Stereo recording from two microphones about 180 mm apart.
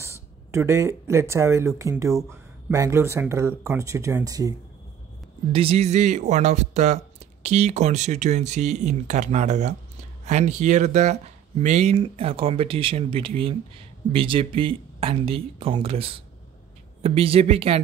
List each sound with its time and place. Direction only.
0.0 s speech: 15° right (ahead or behind)
5.5 s speech: 30° right (ahead or behind)